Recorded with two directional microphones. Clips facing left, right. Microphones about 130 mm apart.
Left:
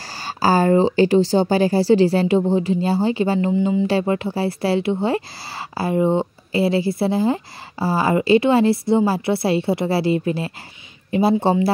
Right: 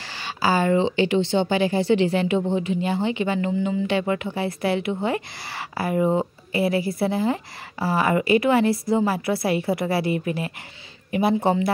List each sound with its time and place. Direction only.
0.1 s speech: 40° left (ahead or behind)
3.5 s speech: 20° left (ahead or behind)
3.8 s speech: 35° left (ahead or behind)